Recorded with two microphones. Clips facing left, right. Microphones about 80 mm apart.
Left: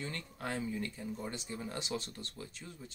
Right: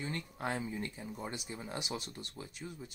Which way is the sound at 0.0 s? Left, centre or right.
Right.